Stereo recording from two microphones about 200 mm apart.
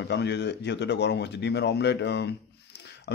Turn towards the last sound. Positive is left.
turn(degrees=60)  # may be behind; listen again after turning